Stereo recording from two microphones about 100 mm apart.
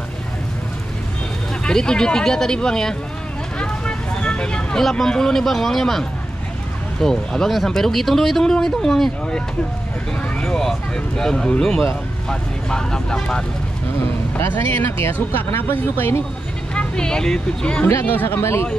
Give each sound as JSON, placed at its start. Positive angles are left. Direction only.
{"t": 1.6, "sound": "speech", "side_deg": 5}
{"t": 3.5, "sound": "vehicle", "side_deg": 10}
{"t": 7.0, "sound": "speech", "side_deg": 5}
{"t": 14.4, "sound": "speech", "side_deg": 20}
{"t": 16.7, "sound": "speech", "side_deg": 10}